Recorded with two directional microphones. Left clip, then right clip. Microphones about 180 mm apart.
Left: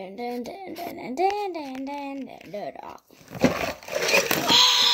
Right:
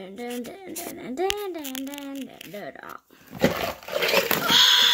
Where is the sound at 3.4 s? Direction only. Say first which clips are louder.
Even; 15° left (ahead or behind).